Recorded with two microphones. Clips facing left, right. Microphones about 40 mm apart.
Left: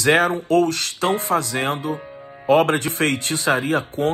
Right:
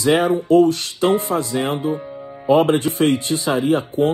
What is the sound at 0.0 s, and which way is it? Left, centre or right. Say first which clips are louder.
Speech: right 1 dB; left.